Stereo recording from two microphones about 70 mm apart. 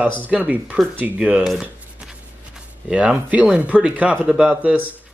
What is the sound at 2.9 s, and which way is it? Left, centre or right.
Speech, centre.